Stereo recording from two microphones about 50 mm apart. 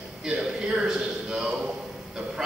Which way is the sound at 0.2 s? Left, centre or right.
Centre.